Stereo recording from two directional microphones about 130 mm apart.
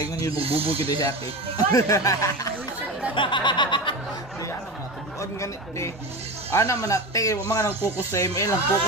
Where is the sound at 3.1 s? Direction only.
40° left (ahead or behind).